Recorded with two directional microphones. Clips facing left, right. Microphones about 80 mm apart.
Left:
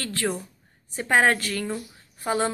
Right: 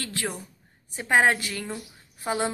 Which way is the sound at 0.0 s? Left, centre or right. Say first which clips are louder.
Left 4 dB; centre.